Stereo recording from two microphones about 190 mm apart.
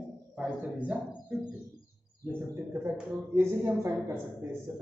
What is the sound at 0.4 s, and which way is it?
Speech, 5° right (ahead or behind).